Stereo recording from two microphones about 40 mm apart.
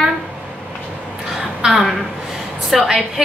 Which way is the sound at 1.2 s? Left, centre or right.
Centre.